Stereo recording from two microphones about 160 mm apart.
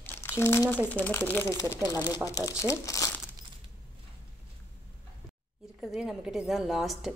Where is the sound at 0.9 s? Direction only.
10° left (ahead or behind).